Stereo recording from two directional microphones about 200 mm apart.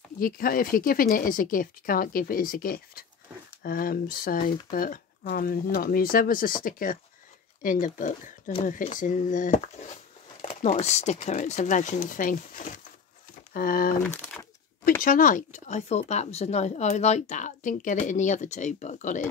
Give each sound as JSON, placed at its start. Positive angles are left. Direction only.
{"t": 0.2, "sound": "speech", "side_deg": 45}
{"t": 14.0, "sound": "crumpling", "side_deg": 5}
{"t": 15.0, "sound": "speech", "side_deg": 40}